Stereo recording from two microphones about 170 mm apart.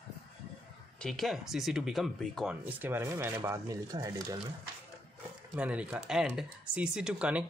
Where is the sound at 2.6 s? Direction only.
10° right (ahead or behind).